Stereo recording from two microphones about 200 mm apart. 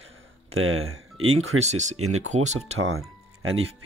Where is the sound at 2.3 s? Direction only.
35° right (ahead or behind).